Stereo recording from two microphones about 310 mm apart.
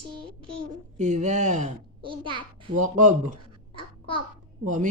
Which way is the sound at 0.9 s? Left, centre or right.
Right.